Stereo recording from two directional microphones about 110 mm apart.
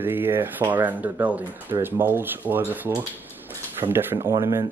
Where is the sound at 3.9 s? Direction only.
20° right (ahead or behind).